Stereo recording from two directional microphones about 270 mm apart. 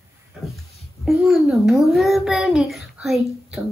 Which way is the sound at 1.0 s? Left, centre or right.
Centre.